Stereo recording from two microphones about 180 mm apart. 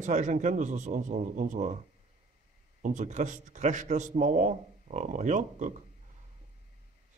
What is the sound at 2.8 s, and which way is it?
A man's voice, 40° right (ahead or behind).